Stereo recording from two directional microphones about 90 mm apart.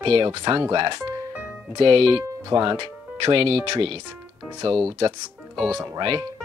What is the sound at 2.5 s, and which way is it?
Speech, 55° right (ahead or behind).